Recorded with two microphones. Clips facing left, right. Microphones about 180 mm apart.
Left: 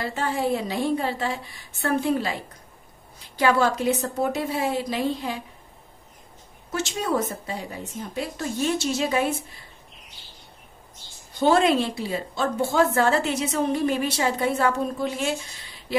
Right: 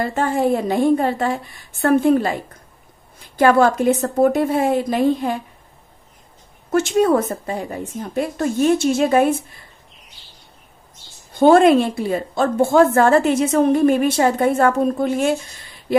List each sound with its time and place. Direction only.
0.0 s a woman's voice: 50° right (ahead or behind)
6.7 s a woman's voice: 55° right (ahead or behind)
11.3 s a woman's voice: 50° right (ahead or behind)